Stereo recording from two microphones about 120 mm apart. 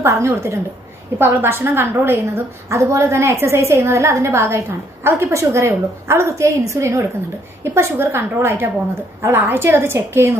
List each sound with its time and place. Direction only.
0.0 s a woman's voice: 20° right (ahead or behind)